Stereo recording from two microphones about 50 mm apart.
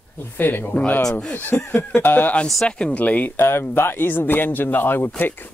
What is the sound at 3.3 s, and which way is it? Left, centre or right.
Speech, left.